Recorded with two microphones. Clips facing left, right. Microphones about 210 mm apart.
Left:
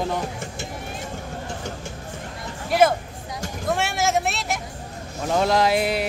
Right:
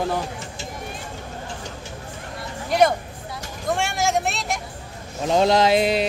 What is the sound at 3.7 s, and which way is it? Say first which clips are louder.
Vehicle: even; centre (ahead or behind).